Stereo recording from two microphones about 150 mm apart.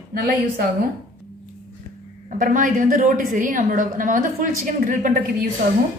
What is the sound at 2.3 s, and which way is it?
A woman's voice, 60° right (ahead or behind).